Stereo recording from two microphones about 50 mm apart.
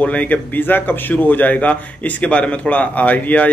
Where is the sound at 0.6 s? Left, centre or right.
Left.